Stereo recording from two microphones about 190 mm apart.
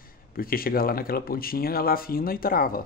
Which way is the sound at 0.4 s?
50° left (ahead or behind).